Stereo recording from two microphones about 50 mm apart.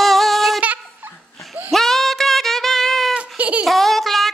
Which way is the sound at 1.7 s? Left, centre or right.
Centre.